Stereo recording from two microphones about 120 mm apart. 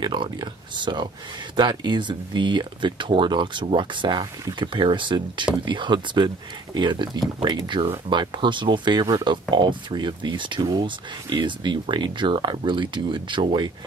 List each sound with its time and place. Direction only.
0.0 s speech: 40° right (ahead or behind)